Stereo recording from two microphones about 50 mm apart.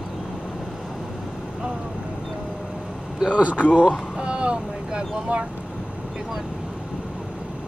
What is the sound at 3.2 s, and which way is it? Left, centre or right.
Speech, right.